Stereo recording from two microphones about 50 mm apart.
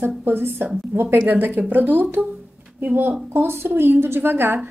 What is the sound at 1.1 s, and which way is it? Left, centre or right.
Speech, right.